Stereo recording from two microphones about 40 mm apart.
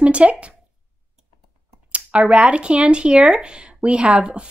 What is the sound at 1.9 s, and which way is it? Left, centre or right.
Speech, right.